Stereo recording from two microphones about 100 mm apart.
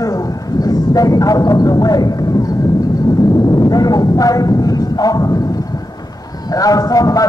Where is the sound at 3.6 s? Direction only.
40° left (ahead or behind).